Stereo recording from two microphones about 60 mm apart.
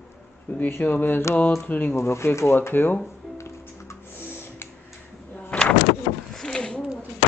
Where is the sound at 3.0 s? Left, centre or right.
Left.